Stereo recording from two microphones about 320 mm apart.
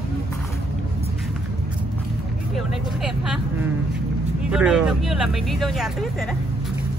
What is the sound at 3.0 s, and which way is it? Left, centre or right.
Vehicle, centre.